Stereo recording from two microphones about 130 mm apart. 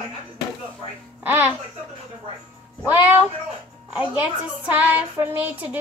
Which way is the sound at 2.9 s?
15° right (ahead or behind).